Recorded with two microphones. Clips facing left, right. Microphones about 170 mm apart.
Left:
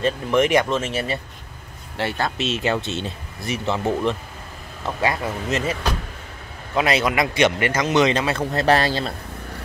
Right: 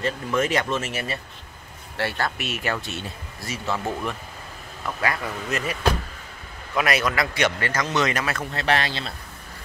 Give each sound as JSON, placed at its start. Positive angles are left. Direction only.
{"t": 0.0, "sound": "speech", "side_deg": 20}
{"t": 8.5, "sound": "speech", "side_deg": 40}